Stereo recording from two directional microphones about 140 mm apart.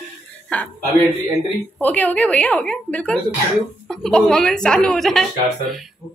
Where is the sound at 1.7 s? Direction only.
10° left (ahead or behind).